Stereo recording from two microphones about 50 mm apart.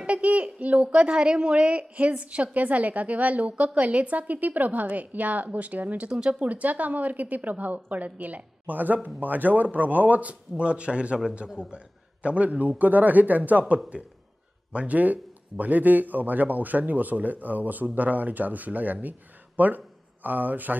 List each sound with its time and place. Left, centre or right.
0.0 s speech: right
6.0 s speech: centre
6.5 s a man's voice: right
10.6 s a man's voice: right